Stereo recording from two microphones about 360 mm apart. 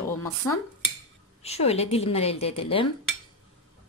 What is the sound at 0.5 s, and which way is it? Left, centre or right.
Cutlery, centre.